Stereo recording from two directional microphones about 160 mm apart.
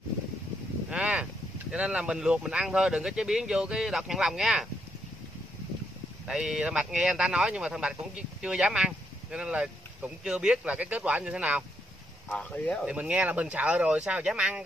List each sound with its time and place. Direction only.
0.8 s a sound: 5° right (ahead or behind)
1.7 s speech: 5° right (ahead or behind)
6.2 s speech: 5° right (ahead or behind)
12.3 s speech: 10° left (ahead or behind)
12.8 s speech: 5° right (ahead or behind)